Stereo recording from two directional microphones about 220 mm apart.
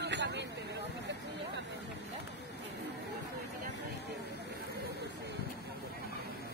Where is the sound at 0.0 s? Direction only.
50° right (ahead or behind).